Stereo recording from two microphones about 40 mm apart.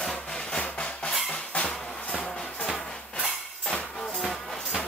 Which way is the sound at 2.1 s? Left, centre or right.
Centre.